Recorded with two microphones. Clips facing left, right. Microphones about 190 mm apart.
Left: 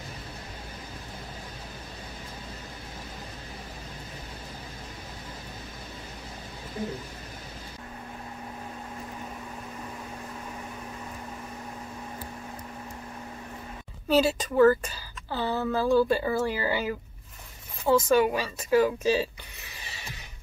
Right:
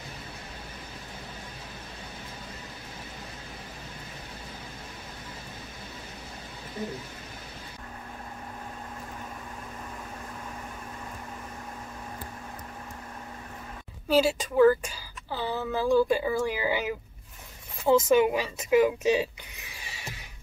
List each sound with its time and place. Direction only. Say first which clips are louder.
14.0 s a woman's voice: even; 10° right (ahead or behind)
19.7 s music: left 1 dB; 10° right (ahead or behind)